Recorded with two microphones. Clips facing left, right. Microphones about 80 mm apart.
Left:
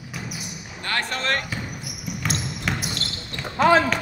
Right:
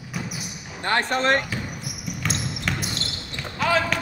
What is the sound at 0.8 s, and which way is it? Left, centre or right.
Speech, right.